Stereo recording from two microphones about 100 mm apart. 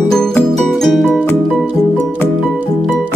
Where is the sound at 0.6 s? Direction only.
Centre (ahead or behind).